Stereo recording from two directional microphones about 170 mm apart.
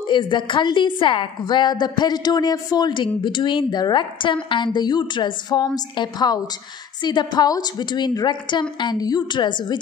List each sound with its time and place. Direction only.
0.0 s a woman's voice: 25° left (ahead or behind)